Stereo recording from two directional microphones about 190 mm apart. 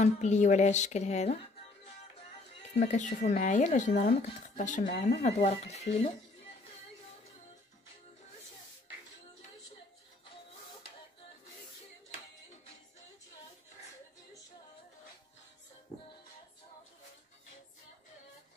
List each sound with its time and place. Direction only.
0.0 s speech: 35° left (ahead or behind)
2.7 s speech: 35° left (ahead or behind)
4.8 s speech: 60° left (ahead or behind)
5.2 s speech: 35° left (ahead or behind)